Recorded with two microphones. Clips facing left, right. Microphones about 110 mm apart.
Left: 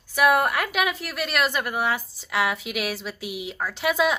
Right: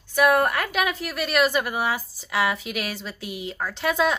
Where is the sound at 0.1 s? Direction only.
5° left (ahead or behind).